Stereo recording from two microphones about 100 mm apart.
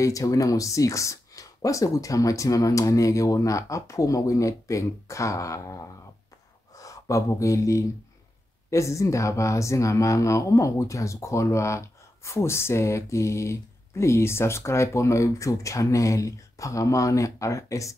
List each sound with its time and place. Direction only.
0.0 s speech: 35° left (ahead or behind)